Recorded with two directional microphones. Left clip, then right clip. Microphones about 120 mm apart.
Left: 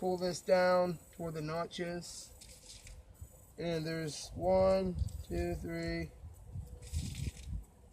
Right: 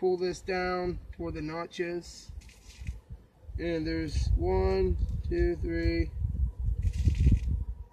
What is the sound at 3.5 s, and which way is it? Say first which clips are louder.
Speech: right 6 dB; 45° left (ahead or behind).